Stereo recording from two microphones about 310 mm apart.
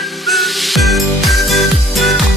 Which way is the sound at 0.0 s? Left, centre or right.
Centre.